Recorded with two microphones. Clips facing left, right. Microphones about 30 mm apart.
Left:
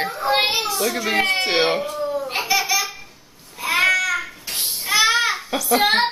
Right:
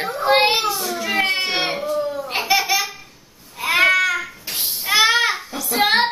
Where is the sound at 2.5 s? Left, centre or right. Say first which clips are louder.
Right 2 dB; right.